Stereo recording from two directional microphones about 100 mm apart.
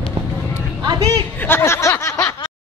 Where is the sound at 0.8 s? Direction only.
40° right (ahead or behind).